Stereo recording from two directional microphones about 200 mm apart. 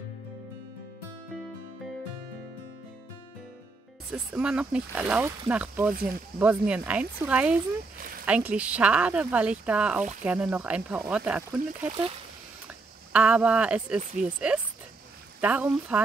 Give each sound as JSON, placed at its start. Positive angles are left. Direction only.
{"t": 4.1, "sound": "speech", "side_deg": -5}
{"t": 8.0, "sound": "a sound", "side_deg": -45}
{"t": 8.3, "sound": "speech", "side_deg": -5}